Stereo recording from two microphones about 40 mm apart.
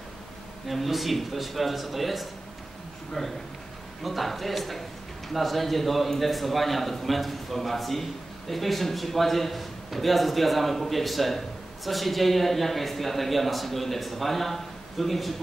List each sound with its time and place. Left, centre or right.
0.7 s a man's voice: centre